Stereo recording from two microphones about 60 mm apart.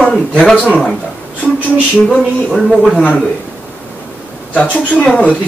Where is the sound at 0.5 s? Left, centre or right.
Left.